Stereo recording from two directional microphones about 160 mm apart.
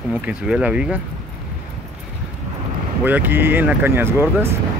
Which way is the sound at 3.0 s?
10° right (ahead or behind).